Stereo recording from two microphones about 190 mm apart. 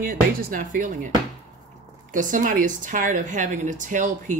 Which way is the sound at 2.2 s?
45° right (ahead or behind).